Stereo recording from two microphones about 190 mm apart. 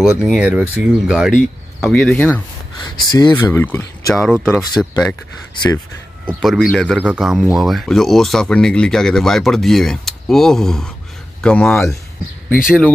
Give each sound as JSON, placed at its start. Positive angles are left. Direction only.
{"t": 0.0, "sound": "speech", "side_deg": -5}
{"t": 2.8, "sound": "speech", "side_deg": 20}
{"t": 4.1, "sound": "speech", "side_deg": 0}
{"t": 6.2, "sound": "speech", "side_deg": 0}